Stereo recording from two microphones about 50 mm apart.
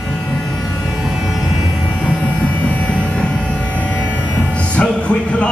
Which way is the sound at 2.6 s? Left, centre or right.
Left.